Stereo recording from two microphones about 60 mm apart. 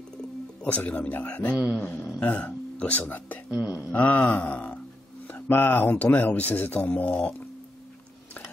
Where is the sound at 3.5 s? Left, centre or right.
Right.